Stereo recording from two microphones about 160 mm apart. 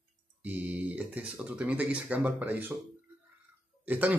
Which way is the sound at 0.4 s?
10° right (ahead or behind).